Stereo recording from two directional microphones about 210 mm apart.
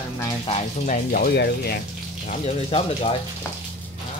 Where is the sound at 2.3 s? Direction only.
30° left (ahead or behind).